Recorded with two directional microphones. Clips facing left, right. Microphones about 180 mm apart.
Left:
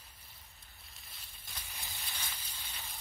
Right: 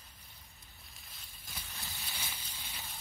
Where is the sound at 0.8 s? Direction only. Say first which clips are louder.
Even; centre (ahead or behind).